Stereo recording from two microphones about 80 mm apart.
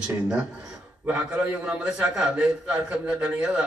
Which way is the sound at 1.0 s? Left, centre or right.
Centre.